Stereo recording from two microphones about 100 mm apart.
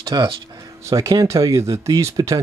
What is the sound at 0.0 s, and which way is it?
Speech, 45° right (ahead or behind).